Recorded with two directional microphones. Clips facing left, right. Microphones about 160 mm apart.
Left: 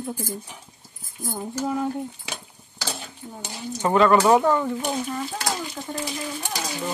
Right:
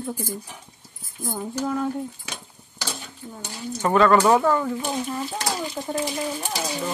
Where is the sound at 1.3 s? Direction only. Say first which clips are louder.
Even; 5° left (ahead or behind).